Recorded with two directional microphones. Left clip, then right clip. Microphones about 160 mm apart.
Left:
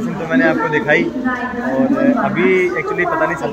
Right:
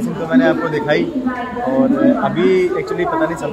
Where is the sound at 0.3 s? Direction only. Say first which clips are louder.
Left 1 dB; 15° right (ahead or behind).